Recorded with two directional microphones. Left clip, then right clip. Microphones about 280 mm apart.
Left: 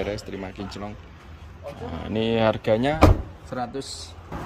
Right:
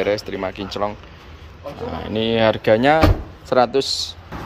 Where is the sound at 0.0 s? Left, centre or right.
Centre.